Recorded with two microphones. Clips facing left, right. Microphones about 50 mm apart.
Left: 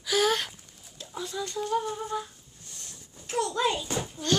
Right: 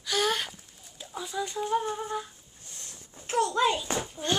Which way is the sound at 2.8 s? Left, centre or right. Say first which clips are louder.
Right 1 dB; right.